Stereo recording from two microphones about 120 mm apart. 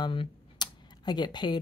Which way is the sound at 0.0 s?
40° left (ahead or behind).